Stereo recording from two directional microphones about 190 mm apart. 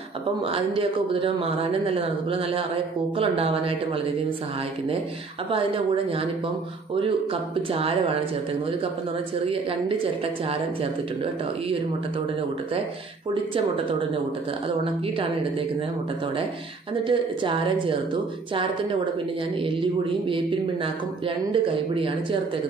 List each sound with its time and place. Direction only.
0.7 s a man's voice: 30° right (ahead or behind)
3.2 s a man's voice: 30° right (ahead or behind)
7.7 s speech: 30° right (ahead or behind)
16.9 s a man's voice: 25° right (ahead or behind)
19.6 s a man's voice: 25° right (ahead or behind)
21.5 s a man's voice: 30° right (ahead or behind)